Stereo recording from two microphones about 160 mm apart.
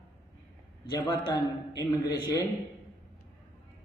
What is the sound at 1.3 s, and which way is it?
A man's voice, 25° left (ahead or behind).